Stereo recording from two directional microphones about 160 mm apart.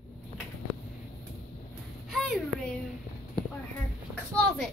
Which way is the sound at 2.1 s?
Centre (ahead or behind).